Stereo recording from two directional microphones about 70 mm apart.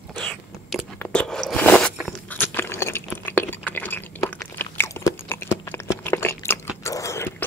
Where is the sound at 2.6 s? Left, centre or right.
Left.